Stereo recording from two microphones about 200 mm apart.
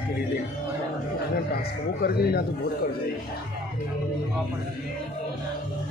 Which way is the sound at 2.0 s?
50° left (ahead or behind).